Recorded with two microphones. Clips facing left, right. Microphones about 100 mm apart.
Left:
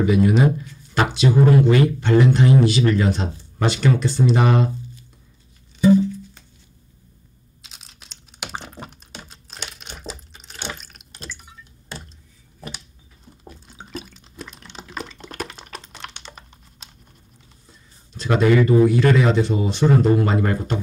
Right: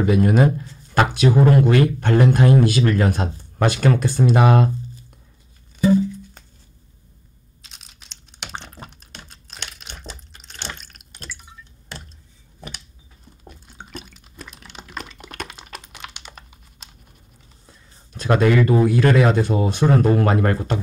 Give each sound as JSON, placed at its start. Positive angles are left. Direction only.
{"t": 0.0, "sound": "speech", "side_deg": -50}
{"t": 7.6, "sound": "computer keyboard", "side_deg": 0}
{"t": 12.5, "sound": "a sound", "side_deg": 0}
{"t": 13.4, "sound": "drip", "side_deg": 0}
{"t": 16.3, "sound": "computer keyboard", "side_deg": 0}
{"t": 18.1, "sound": "speech", "side_deg": -50}